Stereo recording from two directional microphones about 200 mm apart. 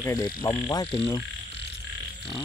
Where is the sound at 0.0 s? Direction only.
20° left (ahead or behind).